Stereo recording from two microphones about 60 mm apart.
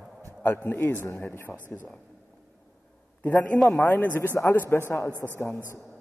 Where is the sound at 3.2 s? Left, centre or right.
Left.